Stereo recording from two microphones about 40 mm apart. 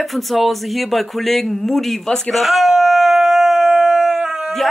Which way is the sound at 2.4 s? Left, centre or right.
Centre.